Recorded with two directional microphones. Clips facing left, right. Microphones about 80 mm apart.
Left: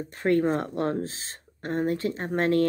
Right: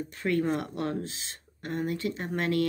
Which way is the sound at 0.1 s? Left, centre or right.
Left.